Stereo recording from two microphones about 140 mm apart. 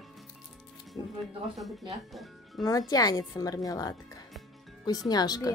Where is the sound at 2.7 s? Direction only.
25° left (ahead or behind).